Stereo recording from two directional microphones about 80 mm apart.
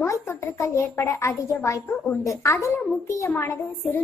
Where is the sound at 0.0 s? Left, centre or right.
Left.